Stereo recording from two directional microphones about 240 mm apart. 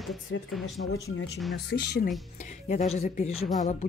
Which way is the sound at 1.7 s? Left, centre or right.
Left.